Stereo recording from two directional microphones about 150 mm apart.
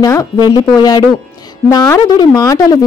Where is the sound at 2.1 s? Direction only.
25° left (ahead or behind).